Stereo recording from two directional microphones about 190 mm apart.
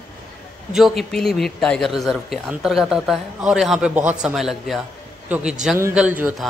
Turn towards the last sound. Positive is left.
turn(degrees=-5)  # may be behind; listen again after turning